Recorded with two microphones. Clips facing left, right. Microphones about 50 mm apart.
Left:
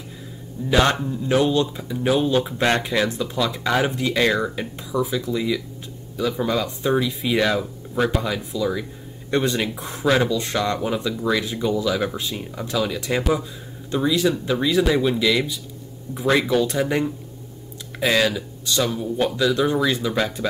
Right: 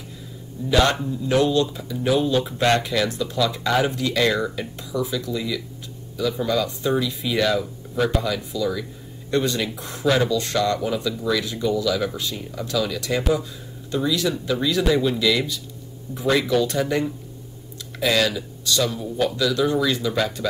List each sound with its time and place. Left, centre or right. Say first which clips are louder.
0.7 s speech: left 1 dB; left